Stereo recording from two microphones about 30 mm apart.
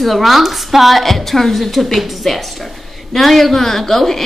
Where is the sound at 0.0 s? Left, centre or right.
Centre.